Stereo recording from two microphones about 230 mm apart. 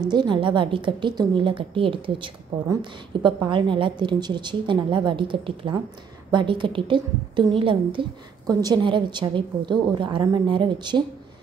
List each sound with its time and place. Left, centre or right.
0.1 s a woman's voice: centre